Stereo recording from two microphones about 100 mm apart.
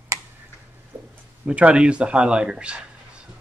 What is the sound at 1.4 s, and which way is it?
Speech, 10° right (ahead or behind).